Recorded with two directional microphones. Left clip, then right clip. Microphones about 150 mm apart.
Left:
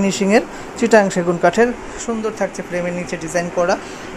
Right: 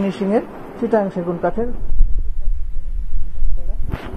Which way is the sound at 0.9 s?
40° left (ahead or behind).